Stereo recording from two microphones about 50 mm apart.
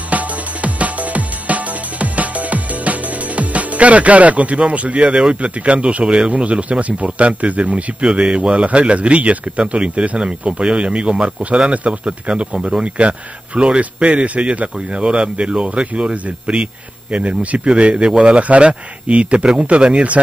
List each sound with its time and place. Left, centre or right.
0.1 s music: right
5.2 s speech: right